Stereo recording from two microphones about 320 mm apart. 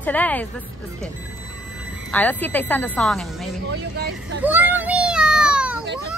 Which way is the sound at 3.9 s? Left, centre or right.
Right.